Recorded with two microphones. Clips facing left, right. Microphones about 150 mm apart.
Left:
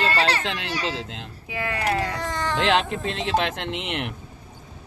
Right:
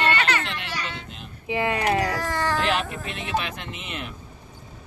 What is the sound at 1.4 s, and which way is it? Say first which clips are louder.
Speech: right 3 dB; 20° right (ahead or behind).